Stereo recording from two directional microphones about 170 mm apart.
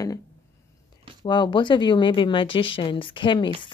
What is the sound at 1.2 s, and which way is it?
Speech, 25° left (ahead or behind).